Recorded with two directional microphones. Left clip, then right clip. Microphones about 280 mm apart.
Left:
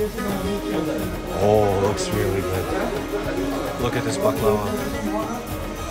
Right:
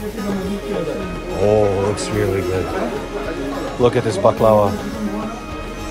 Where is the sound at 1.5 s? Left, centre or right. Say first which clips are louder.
Right 2 dB; centre.